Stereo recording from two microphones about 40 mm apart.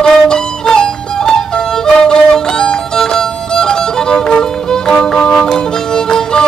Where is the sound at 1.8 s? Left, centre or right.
Centre.